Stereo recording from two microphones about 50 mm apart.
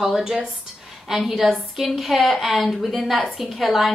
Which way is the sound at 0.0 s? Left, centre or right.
Centre.